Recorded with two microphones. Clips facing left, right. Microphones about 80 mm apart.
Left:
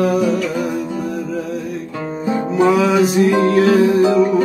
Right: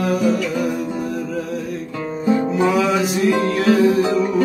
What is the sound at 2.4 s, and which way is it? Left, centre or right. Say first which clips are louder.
Music: left 7 dB; left.